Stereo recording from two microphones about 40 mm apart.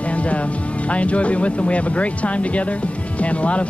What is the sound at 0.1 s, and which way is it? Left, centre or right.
Speech, left.